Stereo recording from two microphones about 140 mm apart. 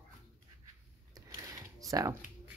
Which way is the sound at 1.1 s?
25° right (ahead or behind).